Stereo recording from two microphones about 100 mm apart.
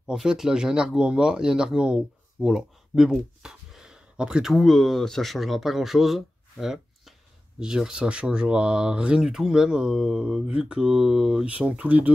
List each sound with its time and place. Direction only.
0.1 s speech: 5° right (ahead or behind)